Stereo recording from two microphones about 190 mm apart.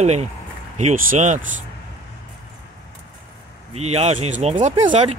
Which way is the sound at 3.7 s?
35° right (ahead or behind).